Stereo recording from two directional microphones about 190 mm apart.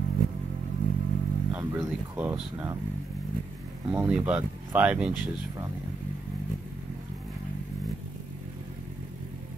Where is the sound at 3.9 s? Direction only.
10° right (ahead or behind).